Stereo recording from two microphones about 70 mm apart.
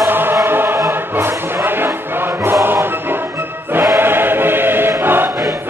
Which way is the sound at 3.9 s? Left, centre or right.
Right.